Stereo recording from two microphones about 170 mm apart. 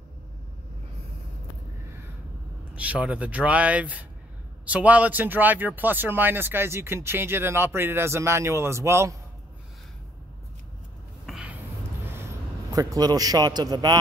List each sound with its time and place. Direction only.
2.7 s speech: 10° right (ahead or behind)
11.2 s a sound: 5° right (ahead or behind)
12.7 s speech: 20° right (ahead or behind)